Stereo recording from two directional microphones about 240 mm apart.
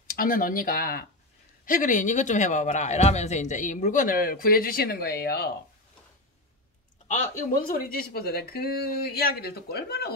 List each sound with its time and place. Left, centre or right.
0.1 s a man's voice: left
7.1 s a man's voice: left